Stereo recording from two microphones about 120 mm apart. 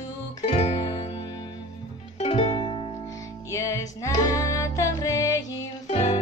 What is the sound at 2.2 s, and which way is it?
Music, 55° left (ahead or behind).